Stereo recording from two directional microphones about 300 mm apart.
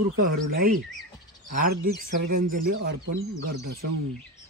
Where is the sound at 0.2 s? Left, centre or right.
Right.